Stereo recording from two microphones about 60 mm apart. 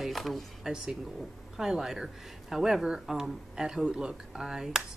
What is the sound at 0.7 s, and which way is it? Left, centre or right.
Speech, centre.